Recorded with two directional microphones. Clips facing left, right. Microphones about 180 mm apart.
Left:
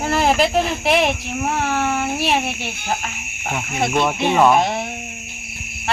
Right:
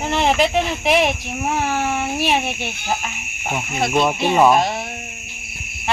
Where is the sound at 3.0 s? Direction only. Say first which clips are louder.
Even; 10° right (ahead or behind).